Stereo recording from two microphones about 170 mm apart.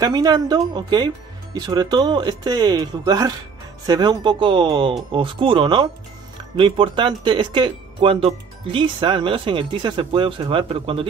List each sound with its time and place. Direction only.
0.0 s speech: 25° right (ahead or behind)